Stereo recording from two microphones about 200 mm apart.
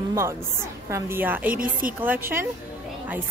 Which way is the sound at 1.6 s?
45° right (ahead or behind).